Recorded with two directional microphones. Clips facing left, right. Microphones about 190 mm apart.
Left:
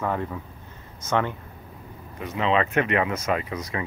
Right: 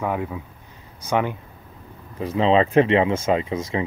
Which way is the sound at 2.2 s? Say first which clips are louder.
Right 5 dB; 30° right (ahead or behind).